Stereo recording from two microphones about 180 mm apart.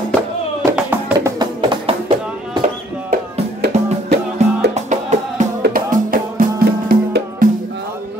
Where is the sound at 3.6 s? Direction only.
65° right (ahead or behind).